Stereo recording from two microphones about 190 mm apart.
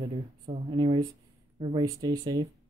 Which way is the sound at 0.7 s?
25° right (ahead or behind).